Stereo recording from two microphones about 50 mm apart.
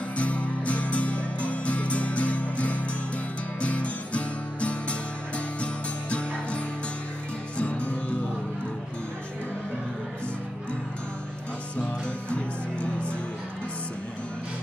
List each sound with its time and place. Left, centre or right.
0.2 s music: left
11.7 s music: left